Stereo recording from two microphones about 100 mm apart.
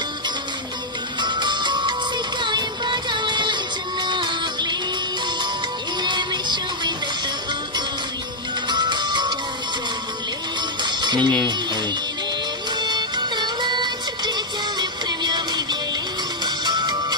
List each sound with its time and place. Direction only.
1.2 s music: 50° right (ahead or behind)
6.0 s music: 50° right (ahead or behind)
8.6 s music: 50° right (ahead or behind)
10.8 s music: 50° right (ahead or behind)
12.7 s music: 45° right (ahead or behind)